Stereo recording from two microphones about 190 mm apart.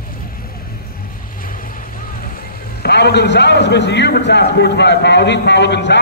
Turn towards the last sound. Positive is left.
turn(degrees=65)  # may be behind; listen again after turning